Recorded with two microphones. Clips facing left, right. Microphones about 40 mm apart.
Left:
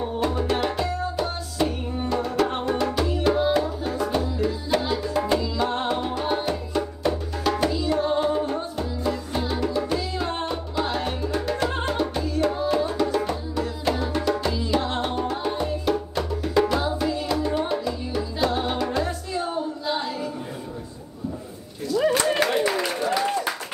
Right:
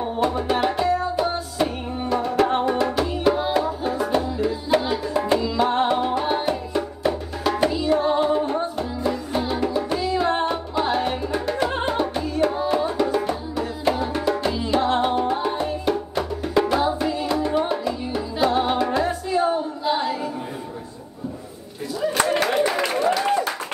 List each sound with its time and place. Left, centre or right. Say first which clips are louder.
0.0 s music: right 2 dB; centre
5.6 s music: right 5 dB; centre
7.7 s music: right 3 dB; right
22.2 s clapping: right 2 dB; centre